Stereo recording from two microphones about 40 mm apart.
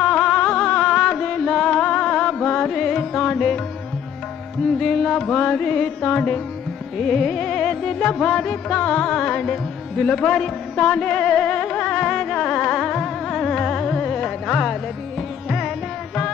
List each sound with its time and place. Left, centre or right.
0.0 s music: left
2.7 s carnatic music: centre
4.7 s music: centre
5.3 s music: left
7.0 s music: centre
8.7 s music: left
9.3 s music: centre